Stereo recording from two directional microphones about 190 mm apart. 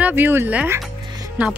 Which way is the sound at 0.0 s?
10° right (ahead or behind).